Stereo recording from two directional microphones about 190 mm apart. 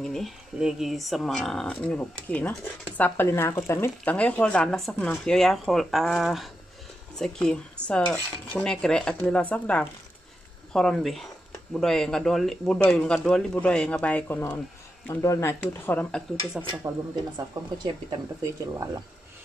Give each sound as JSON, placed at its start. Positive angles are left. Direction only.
{"t": 0.0, "sound": "speech", "side_deg": 0}
{"t": 17.8, "sound": "speech", "side_deg": -15}